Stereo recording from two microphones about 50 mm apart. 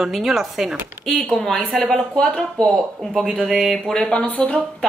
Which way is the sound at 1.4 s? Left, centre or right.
Centre.